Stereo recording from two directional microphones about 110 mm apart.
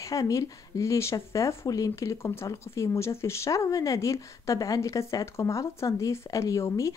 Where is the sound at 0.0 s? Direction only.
30° left (ahead or behind).